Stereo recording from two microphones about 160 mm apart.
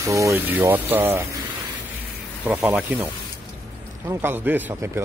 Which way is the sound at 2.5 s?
10° right (ahead or behind).